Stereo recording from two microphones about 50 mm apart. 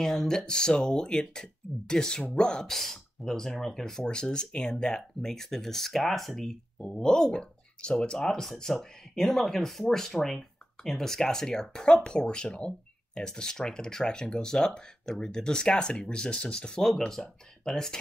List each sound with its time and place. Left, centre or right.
0.0 s speech: centre
2.7 s speech: centre
6.8 s speech: centre